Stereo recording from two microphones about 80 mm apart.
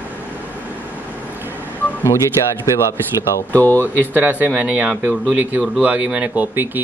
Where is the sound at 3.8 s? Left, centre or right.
Right.